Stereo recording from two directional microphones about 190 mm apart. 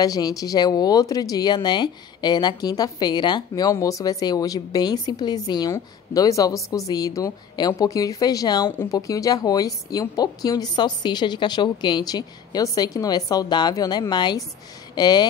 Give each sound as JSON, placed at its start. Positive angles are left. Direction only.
{"t": 0.0, "sound": "speech", "side_deg": 20}